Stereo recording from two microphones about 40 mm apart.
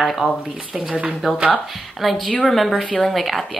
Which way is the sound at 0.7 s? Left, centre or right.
Right.